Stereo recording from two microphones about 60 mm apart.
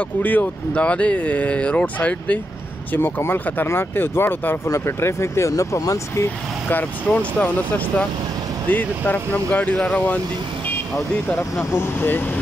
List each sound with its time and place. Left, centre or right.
0.2 s speech: left
2.9 s speech: left
4.6 s speech: left
6.7 s speech: left
11.3 s speech: left